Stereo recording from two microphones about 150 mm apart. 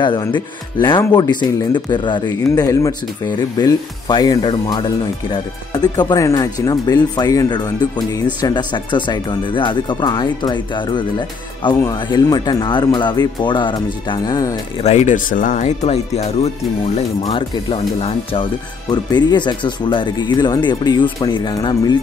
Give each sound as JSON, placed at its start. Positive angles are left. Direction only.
{"t": 0.0, "sound": "speech", "side_deg": 30}
{"t": 14.8, "sound": "speech", "side_deg": 50}
{"t": 17.3, "sound": "speech", "side_deg": 35}